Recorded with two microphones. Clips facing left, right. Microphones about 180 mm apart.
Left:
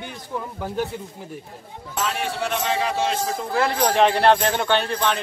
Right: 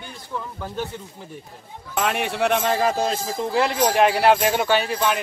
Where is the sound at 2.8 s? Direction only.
40° right (ahead or behind).